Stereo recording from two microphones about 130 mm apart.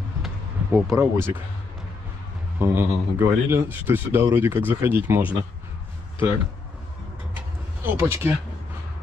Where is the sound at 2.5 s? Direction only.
20° right (ahead or behind).